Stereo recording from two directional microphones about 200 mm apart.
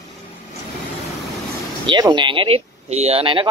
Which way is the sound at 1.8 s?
20° right (ahead or behind).